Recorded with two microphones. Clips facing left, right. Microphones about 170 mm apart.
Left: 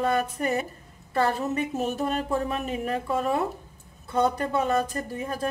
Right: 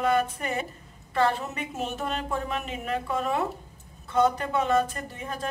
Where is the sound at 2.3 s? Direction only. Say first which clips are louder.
Left 4 dB; 30° left (ahead or behind).